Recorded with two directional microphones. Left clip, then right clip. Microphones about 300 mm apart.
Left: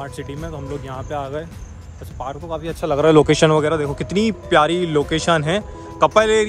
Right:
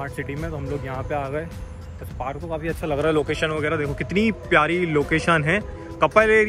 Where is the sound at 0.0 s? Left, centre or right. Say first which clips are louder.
Even; centre.